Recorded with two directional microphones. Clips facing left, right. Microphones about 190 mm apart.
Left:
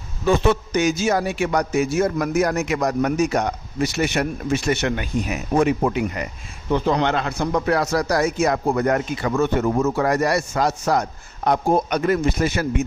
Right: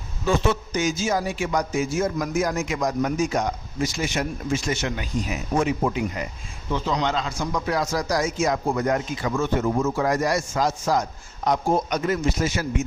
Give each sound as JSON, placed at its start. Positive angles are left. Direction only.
{"t": 0.3, "sound": "speech", "side_deg": 65}